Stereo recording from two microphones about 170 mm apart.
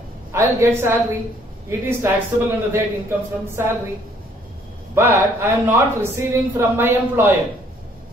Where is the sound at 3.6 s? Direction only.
15° right (ahead or behind).